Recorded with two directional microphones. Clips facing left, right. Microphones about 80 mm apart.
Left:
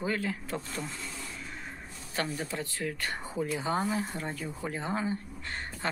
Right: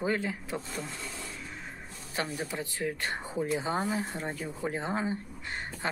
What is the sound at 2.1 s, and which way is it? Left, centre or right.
Speech, centre.